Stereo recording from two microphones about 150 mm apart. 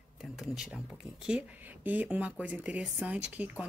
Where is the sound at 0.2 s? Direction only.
5° right (ahead or behind).